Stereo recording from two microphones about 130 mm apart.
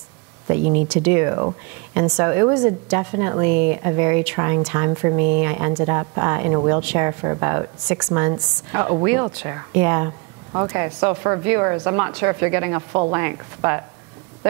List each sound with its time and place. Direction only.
0.5 s speech: 15° right (ahead or behind)